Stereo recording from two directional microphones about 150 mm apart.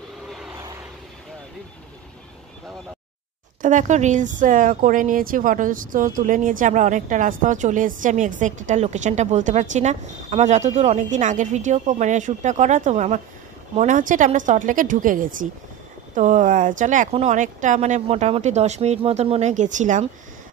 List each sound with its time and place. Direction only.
3.6 s speech: 55° right (ahead or behind)
16.2 s speech: 55° right (ahead or behind)